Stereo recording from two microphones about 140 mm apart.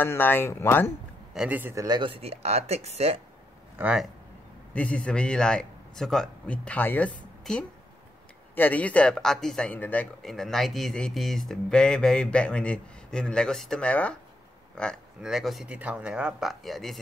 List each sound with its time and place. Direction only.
0.0 s a man's voice: 15° left (ahead or behind)
1.3 s a man's voice: 5° right (ahead or behind)
1.6 s speech: 20° right (ahead or behind)
1.9 s speech: 35° right (ahead or behind)
3.7 s speech: 5° right (ahead or behind)
4.7 s a man's voice: 10° left (ahead or behind)
15.2 s speech: centre (ahead or behind)